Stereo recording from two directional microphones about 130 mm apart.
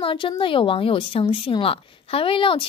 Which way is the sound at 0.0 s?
40° left (ahead or behind).